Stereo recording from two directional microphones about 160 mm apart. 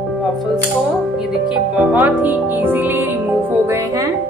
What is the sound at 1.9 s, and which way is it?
Speech, 10° right (ahead or behind).